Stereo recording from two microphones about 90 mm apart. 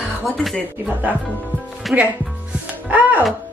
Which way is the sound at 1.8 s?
Centre (ahead or behind).